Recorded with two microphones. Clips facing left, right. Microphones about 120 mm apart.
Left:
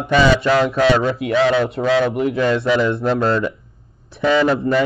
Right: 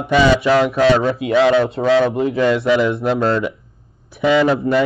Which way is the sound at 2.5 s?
5° right (ahead or behind).